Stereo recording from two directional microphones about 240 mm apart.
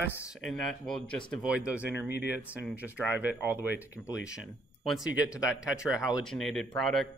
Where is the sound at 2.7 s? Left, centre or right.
Centre.